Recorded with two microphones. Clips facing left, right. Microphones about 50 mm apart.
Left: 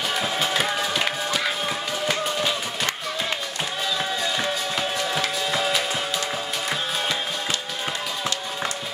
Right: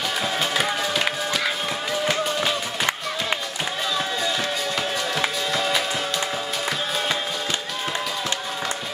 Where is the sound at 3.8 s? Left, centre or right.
Centre.